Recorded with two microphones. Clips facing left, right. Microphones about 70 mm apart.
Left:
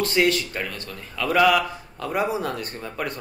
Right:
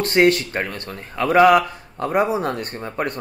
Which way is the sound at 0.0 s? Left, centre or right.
Right.